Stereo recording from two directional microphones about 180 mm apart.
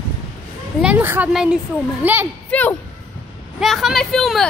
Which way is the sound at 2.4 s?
10° left (ahead or behind).